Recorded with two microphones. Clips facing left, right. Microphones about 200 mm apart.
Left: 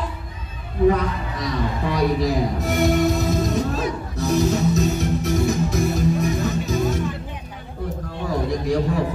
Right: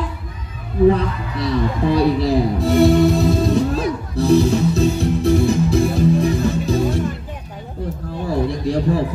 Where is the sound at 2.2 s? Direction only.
30° right (ahead or behind).